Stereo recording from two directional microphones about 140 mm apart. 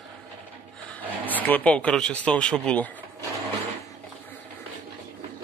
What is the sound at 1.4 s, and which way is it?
Speech, 10° left (ahead or behind).